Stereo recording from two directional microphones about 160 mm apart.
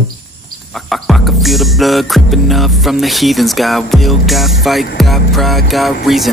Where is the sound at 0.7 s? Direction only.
Centre (ahead or behind).